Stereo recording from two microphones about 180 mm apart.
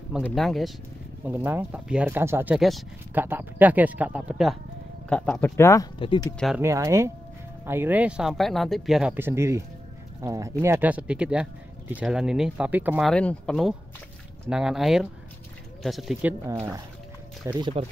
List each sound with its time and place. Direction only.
0.2 s speech: centre (ahead or behind)
1.2 s speech: 10° right (ahead or behind)
5.1 s speech: 5° left (ahead or behind)
5.9 s speech: 25° left (ahead or behind)
6.6 s speech: 15° right (ahead or behind)
13.1 s speech: 5° left (ahead or behind)
17.6 s speech: 25° right (ahead or behind)